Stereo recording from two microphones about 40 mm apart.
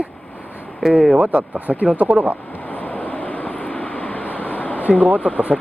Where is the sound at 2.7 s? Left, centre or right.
Left.